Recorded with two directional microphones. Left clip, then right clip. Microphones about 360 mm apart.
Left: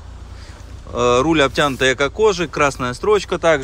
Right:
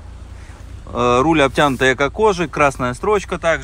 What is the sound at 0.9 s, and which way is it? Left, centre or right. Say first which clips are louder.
Speech: even; centre.